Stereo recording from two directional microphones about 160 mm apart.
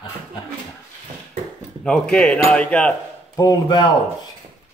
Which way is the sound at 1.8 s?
5° left (ahead or behind).